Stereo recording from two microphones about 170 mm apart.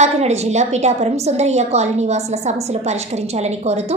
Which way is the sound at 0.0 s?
40° right (ahead or behind).